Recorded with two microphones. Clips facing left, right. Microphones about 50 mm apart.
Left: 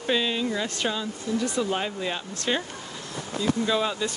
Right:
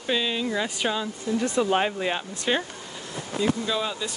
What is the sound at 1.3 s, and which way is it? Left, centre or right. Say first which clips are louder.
Speech: right 3 dB; right.